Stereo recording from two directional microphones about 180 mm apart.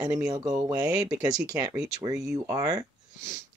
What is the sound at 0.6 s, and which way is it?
Speech, 20° right (ahead or behind).